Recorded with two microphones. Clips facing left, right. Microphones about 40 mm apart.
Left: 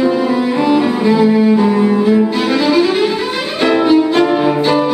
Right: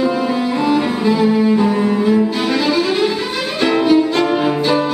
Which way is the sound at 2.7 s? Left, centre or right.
Centre.